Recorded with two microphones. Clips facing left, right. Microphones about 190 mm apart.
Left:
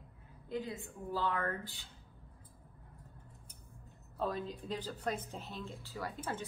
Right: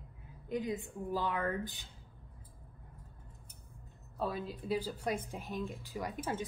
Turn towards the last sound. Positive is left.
turn(degrees=-15)  # may be behind; listen again after turning